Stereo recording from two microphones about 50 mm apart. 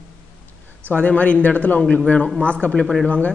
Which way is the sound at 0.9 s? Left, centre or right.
Left.